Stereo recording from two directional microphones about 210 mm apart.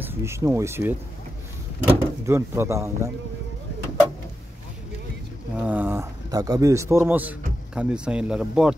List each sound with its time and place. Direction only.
0.0 s a man's voice: 10° right (ahead or behind)
5.6 s a man's voice: 10° right (ahead or behind)